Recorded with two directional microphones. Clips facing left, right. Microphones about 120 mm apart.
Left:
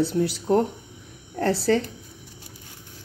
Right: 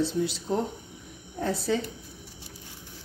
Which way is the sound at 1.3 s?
80° left.